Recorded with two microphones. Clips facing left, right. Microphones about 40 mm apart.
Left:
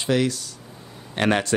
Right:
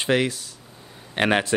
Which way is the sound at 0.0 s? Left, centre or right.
Right.